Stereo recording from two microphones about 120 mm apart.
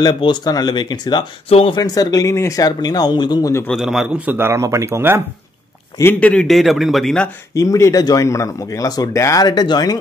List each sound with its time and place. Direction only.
0.0 s speech: 40° left (ahead or behind)
1.5 s speech: 50° left (ahead or behind)
1.8 s speech: 30° left (ahead or behind)
3.7 s a man's voice: 5° right (ahead or behind); by 5.2 s 20° right (ahead or behind)
6.1 s a man's voice: 10° left (ahead or behind)
7.5 s speech: 25° left (ahead or behind)